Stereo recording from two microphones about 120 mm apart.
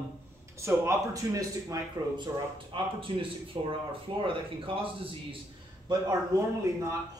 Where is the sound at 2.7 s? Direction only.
45° right (ahead or behind).